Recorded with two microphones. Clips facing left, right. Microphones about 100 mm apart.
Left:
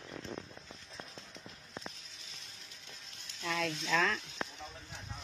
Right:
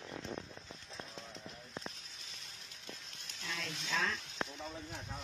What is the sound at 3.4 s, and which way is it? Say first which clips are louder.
Speech: left 8 dB; 70° left (ahead or behind).